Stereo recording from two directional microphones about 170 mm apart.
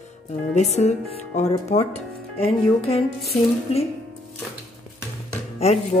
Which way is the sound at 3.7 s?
35° left (ahead or behind).